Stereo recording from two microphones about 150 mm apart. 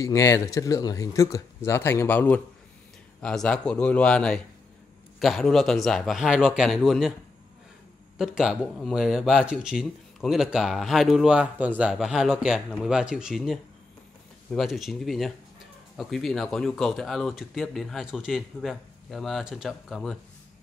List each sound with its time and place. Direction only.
0.0 s speech: 20° left (ahead or behind); by 7.2 s 5° right (ahead or behind)
8.2 s speech: centre (ahead or behind)